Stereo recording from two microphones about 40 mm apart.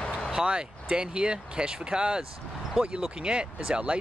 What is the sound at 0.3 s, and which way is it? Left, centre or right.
Speech, right.